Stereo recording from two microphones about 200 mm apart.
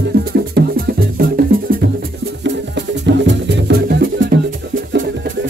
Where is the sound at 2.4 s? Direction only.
60° right (ahead or behind).